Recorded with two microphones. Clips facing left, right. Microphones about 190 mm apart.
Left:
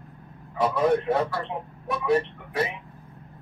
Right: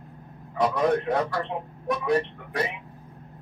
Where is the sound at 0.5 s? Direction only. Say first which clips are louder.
Left 1 dB; 5° left (ahead or behind).